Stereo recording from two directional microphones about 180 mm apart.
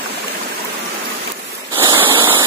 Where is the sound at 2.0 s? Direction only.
30° right (ahead or behind).